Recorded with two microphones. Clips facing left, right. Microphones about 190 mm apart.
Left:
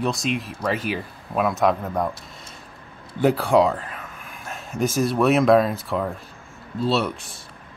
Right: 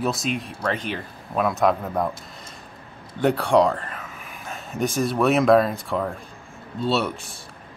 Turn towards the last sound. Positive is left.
turn(degrees=0)  # may be behind; listen again after turning